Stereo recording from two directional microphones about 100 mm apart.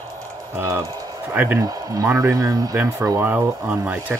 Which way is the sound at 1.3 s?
20° right (ahead or behind).